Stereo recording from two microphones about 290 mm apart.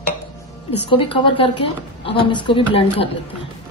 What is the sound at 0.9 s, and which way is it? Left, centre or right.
A woman's voice, centre.